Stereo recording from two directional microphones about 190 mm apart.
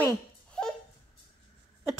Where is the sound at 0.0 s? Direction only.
5° left (ahead or behind).